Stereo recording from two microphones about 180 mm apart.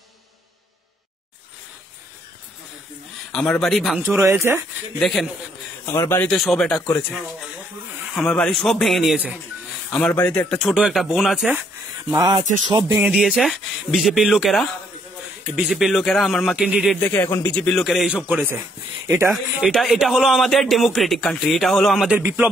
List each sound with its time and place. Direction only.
3.3 s a man's voice: 5° left (ahead or behind)
4.3 s speech: 15° right (ahead or behind)
4.9 s a man's voice: centre (ahead or behind)
5.9 s a man's voice: 15° left (ahead or behind)
6.3 s a man's voice: centre (ahead or behind)
8.1 s a man's voice: centre (ahead or behind)
9.9 s a man's voice: 5° left (ahead or behind)
10.7 s a man's voice: centre (ahead or behind)
12.1 s a man's voice: 15° right (ahead or behind); by 17.0 s centre (ahead or behind)
17.0 s a man's voice: 10° left (ahead or behind); by 22.5 s 10° right (ahead or behind)